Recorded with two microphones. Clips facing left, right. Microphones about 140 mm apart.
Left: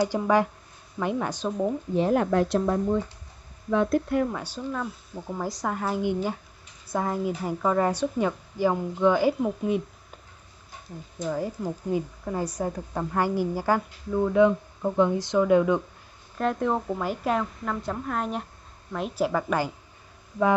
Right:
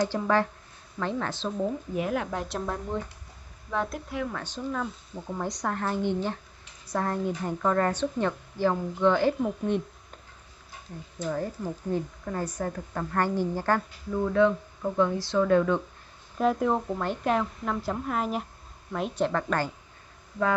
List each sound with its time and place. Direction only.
0.0 s a woman's voice: 10° left (ahead or behind)
2.0 s speech: 35° left (ahead or behind)
2.3 s a woman's voice: centre (ahead or behind)
3.7 s a woman's voice: centre (ahead or behind)
4.3 s a woman's voice: 10° left (ahead or behind)
11.2 s a woman's voice: 10° left (ahead or behind)
16.3 s a woman's voice: 5° right (ahead or behind)